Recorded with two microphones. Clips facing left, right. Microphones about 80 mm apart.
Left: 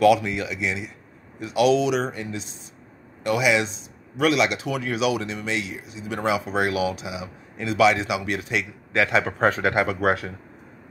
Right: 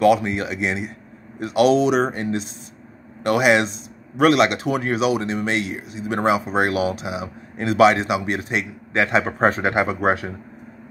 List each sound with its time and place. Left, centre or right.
0.0 s speech: right